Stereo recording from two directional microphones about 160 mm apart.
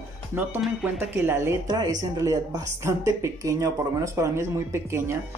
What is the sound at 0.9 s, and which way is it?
Speech, 15° right (ahead or behind).